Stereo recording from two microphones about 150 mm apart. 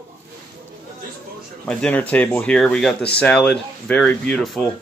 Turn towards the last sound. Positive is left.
turn(degrees=5)  # may be behind; listen again after turning